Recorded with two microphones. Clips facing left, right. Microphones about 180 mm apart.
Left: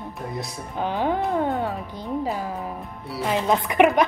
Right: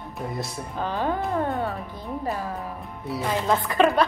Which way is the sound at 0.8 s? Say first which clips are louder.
Left 2 dB; 15° left (ahead or behind).